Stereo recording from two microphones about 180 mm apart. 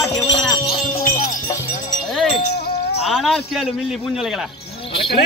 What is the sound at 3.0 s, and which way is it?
Speech, centre (ahead or behind).